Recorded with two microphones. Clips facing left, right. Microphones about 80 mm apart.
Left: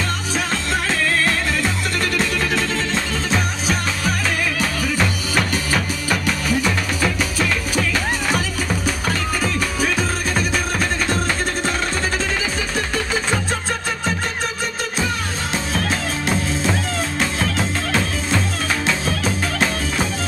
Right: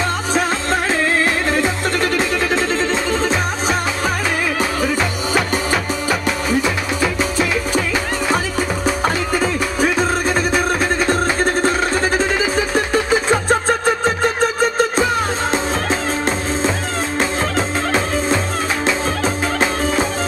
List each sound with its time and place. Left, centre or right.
0.3 s music: right
1.6 s music: right
5.3 s music: right
18.9 s music: right